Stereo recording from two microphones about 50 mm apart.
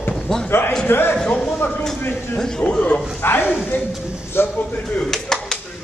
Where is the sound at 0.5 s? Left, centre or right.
Left.